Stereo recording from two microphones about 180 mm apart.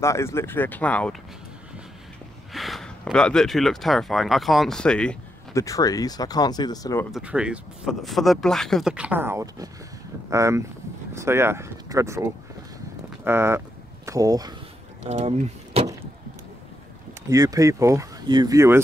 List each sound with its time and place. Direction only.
0.0 s speech: 15° left (ahead or behind)
2.5 s speech: centre (ahead or behind)
5.5 s speech: 15° left (ahead or behind)
7.1 s speech: 5° right (ahead or behind)
15.0 s speech: 40° right (ahead or behind)
17.3 s speech: 20° right (ahead or behind)